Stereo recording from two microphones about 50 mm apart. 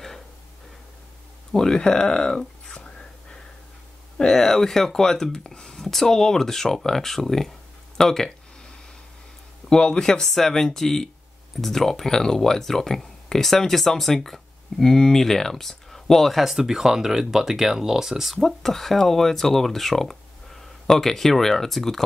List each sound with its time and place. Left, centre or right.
1.5 s speech: centre
4.2 s speech: centre
9.7 s speech: centre
18.4 s speech: centre